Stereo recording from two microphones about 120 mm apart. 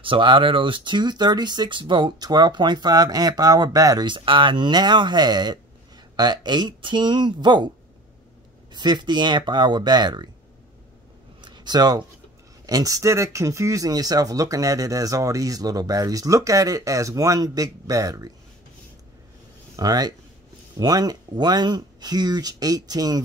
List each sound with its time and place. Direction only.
0.0 s speech: 45° right (ahead or behind)
8.7 s speech: 40° right (ahead or behind)
11.4 s a sound: 40° right (ahead or behind)
12.6 s speech: 30° right (ahead or behind)
19.7 s speech: 35° right (ahead or behind)